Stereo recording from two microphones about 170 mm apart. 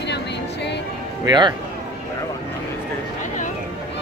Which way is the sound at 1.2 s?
25° right (ahead or behind).